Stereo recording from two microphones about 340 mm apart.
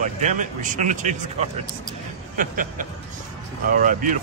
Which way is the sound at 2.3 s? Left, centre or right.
Right.